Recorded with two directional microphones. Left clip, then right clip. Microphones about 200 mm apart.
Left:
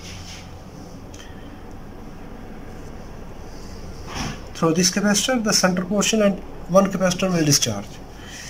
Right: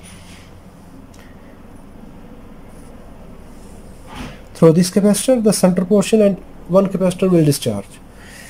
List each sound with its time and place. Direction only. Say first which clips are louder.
4.6 s speech: right 7 dB; 25° right (ahead or behind)